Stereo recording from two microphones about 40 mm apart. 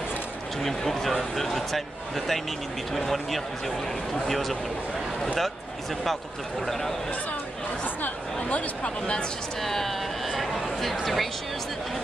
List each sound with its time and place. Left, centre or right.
0.7 s a man's voice: centre
6.6 s speech: centre
7.8 s chatter: left
8.8 s speech: left
9.6 s speech: centre
10.2 s a sound: centre